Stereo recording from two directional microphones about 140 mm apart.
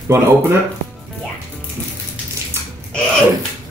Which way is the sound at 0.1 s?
15° right (ahead or behind).